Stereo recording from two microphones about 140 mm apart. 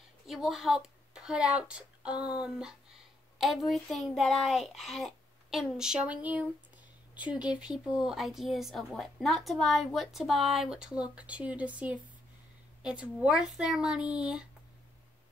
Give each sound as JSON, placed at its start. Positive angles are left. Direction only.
{"t": 0.3, "sound": "a woman's voice", "side_deg": 0}